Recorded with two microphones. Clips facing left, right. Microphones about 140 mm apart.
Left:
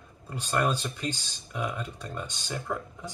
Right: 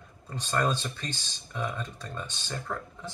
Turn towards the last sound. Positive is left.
turn(degrees=15)  # may be behind; listen again after turning